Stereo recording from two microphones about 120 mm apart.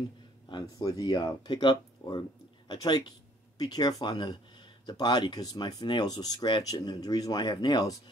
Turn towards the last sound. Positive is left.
turn(degrees=35)  # may be behind; listen again after turning